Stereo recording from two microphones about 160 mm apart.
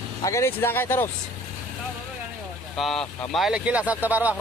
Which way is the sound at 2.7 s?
Centre (ahead or behind).